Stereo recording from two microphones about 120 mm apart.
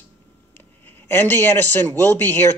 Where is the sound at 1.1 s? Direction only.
15° left (ahead or behind).